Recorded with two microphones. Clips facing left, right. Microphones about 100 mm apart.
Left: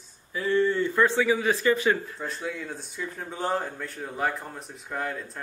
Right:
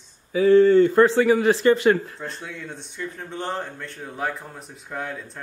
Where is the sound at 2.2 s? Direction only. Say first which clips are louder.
Left 1 dB; centre (ahead or behind).